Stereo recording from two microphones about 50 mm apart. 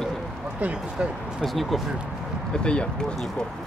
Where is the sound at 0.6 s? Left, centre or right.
Right.